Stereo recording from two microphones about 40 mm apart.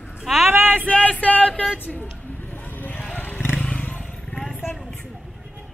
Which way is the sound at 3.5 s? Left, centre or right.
Centre.